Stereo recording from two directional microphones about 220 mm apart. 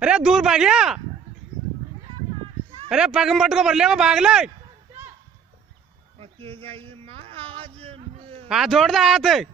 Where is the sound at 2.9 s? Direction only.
5° right (ahead or behind).